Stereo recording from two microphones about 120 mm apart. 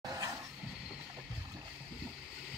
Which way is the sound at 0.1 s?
30° right (ahead or behind).